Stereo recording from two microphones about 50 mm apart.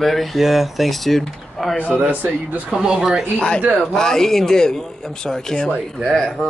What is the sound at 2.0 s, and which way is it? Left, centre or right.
Speech, right.